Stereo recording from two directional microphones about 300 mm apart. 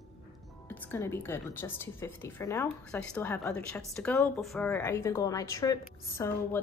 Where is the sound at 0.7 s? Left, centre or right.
Centre.